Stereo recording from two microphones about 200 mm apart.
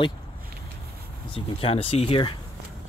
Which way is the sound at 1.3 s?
30° left (ahead or behind).